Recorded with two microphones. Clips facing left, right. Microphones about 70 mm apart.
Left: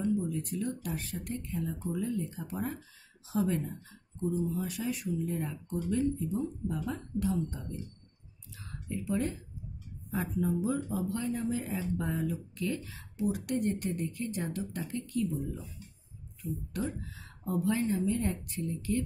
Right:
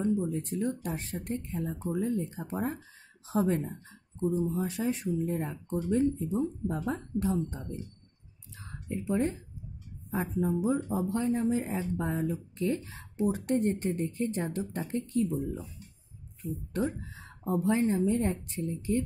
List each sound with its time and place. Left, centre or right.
0.0 s speech: right
8.5 s a sound: right
10.1 s speech: right
16.7 s speech: right